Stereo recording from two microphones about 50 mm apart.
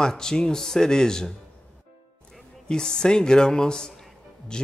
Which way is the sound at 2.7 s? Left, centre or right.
Centre.